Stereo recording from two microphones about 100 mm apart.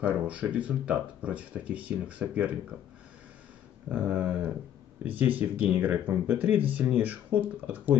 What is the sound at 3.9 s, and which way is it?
Speech, 20° right (ahead or behind).